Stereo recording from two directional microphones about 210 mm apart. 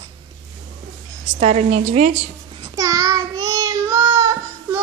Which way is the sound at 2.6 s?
15° right (ahead or behind).